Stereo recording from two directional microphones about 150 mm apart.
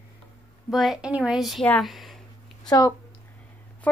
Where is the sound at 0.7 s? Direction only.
Centre (ahead or behind).